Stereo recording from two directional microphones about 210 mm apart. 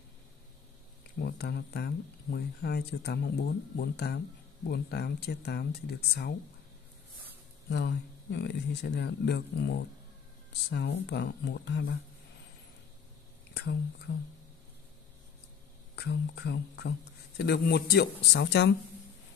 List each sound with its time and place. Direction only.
1.1 s speech: 50° left (ahead or behind)
7.7 s speech: 55° left (ahead or behind)
13.5 s speech: 55° left (ahead or behind)
16.0 s speech: 50° left (ahead or behind)